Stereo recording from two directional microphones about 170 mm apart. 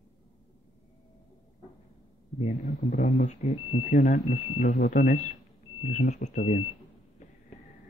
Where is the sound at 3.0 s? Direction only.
45° left (ahead or behind).